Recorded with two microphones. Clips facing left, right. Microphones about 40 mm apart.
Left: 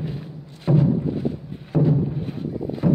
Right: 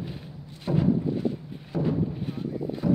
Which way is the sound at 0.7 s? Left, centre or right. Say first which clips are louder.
Left 4 dB; left.